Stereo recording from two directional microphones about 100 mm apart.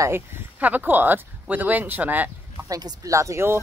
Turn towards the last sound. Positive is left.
turn(degrees=-30)  # may be behind; listen again after turning